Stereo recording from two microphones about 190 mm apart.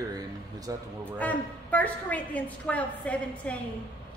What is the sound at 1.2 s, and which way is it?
A woman's voice, 10° left (ahead or behind).